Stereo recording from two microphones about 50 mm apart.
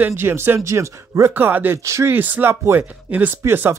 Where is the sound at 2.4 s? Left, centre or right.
Right.